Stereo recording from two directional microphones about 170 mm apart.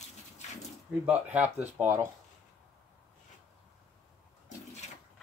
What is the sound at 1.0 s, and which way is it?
Speech, 5° right (ahead or behind).